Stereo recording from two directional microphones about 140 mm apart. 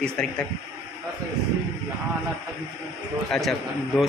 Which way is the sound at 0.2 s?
5° left (ahead or behind).